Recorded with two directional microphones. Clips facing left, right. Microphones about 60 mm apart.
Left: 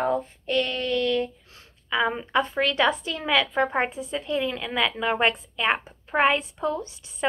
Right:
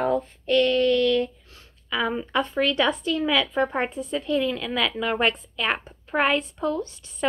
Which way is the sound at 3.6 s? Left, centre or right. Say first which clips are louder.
Left 1 dB; left.